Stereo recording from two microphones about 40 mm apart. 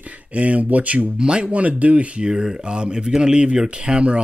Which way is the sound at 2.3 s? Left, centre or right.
Centre.